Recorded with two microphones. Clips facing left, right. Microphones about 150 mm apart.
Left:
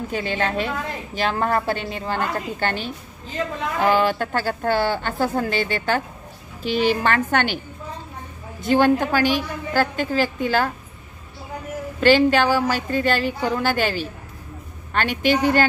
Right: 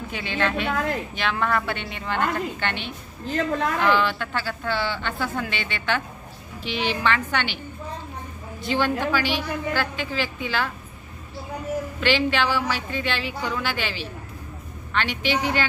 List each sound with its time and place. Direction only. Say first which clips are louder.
0.1 s a woman's voice: left 1 dB; 40° left (ahead or behind)
8.6 s speech: left 6 dB; 45° left (ahead or behind)
12.0 s speech: left 8 dB; 40° left (ahead or behind)